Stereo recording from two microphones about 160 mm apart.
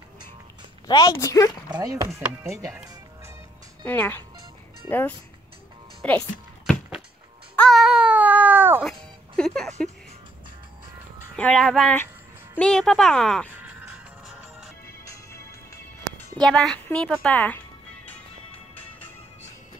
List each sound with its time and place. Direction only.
0.8 s a woman's voice: 25° left (ahead or behind)
1.7 s speech: 20° right (ahead or behind)
3.8 s speech: 10° left (ahead or behind)
6.6 s a sound: centre (ahead or behind)
7.5 s baby cry: 5° left (ahead or behind); by 8.8 s 10° right (ahead or behind)
9.4 s speech: 5° left (ahead or behind)
11.3 s speech: 5° left (ahead or behind)
13.7 s music: 10° right (ahead or behind)
15.0 s music: 15° left (ahead or behind)
16.4 s speech: 5° left (ahead or behind)